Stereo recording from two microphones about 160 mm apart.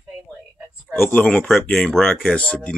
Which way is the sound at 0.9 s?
10° left (ahead or behind).